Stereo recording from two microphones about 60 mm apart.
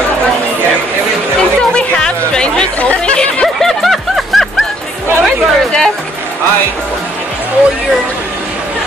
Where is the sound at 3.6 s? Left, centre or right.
Centre.